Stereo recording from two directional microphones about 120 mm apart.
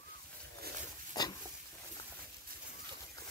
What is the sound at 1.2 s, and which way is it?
Pig, 35° left (ahead or behind).